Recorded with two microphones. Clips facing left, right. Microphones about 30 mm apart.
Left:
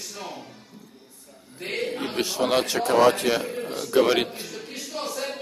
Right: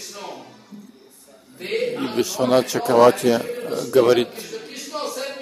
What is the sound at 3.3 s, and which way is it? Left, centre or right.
Speech, left.